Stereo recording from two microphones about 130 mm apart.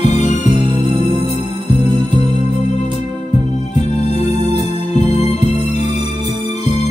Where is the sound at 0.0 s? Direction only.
60° left (ahead or behind).